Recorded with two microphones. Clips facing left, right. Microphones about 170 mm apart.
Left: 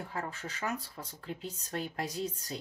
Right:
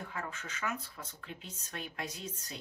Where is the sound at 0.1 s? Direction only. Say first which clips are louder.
Left 3 dB; 35° left (ahead or behind).